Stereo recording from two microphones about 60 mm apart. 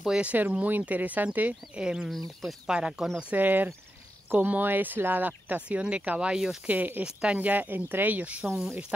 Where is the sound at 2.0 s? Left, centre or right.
Centre.